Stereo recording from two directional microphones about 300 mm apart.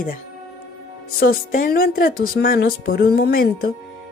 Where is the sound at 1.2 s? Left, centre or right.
Left.